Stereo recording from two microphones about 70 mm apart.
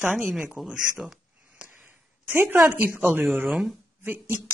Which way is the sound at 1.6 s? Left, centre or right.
Right.